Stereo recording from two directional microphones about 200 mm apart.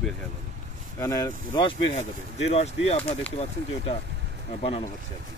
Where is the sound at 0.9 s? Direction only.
15° left (ahead or behind).